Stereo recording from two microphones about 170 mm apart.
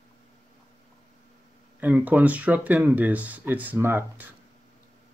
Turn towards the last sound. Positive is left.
turn(degrees=-15)  # may be behind; listen again after turning